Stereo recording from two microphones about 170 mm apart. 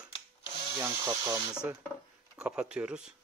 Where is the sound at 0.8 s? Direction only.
15° right (ahead or behind).